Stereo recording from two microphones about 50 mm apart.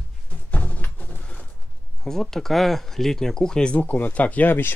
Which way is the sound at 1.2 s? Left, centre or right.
Left.